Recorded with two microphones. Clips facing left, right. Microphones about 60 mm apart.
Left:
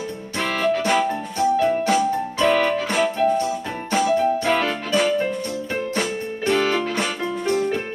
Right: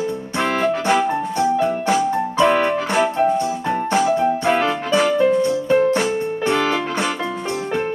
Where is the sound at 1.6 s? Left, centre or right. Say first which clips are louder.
Right 1 dB; right.